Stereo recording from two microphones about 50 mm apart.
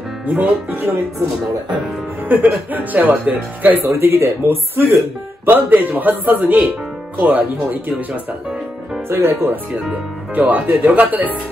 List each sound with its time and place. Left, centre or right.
0.3 s speech: right
2.2 s speech: right
3.8 s speech: right
5.4 s speech: right
9.1 s speech: right
10.3 s speech: right